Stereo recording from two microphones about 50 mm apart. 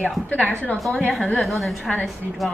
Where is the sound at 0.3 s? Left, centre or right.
Left.